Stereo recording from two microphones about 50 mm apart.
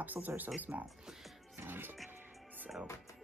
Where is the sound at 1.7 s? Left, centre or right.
Right.